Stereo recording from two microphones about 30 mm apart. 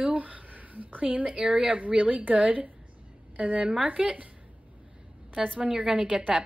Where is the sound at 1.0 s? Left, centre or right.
Right.